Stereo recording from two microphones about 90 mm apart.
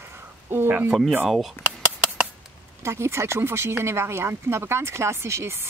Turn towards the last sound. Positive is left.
turn(degrees=-30)  # may be behind; listen again after turning